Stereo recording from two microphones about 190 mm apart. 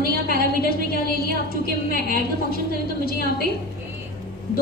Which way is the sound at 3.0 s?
50° left (ahead or behind).